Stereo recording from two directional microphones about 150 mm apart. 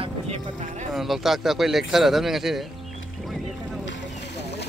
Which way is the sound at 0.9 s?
Centre (ahead or behind).